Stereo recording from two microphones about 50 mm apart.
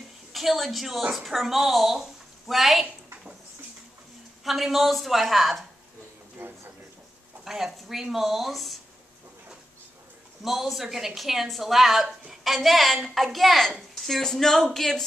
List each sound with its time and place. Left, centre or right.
0.3 s a woman's voice: centre
4.5 s speech: centre
6.3 s a sound: right
7.4 s speech: centre
10.4 s a woman's voice: centre